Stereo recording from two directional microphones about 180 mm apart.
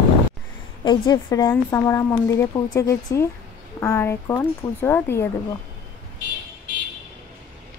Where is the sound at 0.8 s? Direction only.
25° left (ahead or behind).